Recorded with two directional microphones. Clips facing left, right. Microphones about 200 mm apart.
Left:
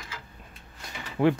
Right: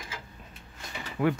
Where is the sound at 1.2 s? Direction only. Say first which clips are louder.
Left 4 dB; 30° left (ahead or behind).